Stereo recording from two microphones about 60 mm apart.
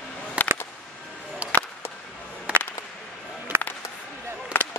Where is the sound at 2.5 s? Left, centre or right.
Centre.